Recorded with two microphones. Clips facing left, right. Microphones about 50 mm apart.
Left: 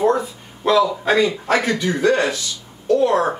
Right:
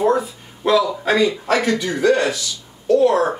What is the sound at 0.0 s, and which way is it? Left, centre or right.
Speech, centre.